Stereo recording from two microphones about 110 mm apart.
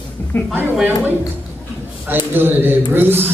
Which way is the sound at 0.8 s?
15° right (ahead or behind).